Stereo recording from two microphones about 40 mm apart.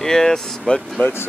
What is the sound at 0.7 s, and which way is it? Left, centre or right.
Speech, left.